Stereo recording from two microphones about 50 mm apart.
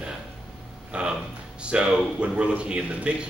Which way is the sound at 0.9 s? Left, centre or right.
Right.